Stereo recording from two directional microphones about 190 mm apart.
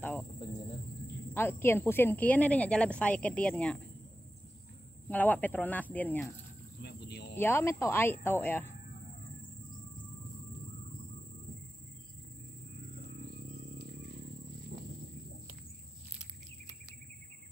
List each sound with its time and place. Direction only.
0.0 s cricket: 10° left (ahead or behind)
1.3 s speech: 10° left (ahead or behind)
5.1 s speech: 10° left (ahead or behind)
6.8 s a sound: 60° left (ahead or behind)
7.3 s speech: 10° left (ahead or behind)
14.7 s a sound: 60° right (ahead or behind)